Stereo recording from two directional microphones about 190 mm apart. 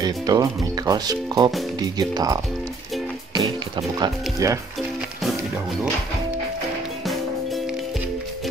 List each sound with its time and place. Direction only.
0.0 s speech: 20° right (ahead or behind)